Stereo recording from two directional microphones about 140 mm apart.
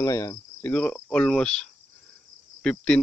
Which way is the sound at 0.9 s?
5° left (ahead or behind).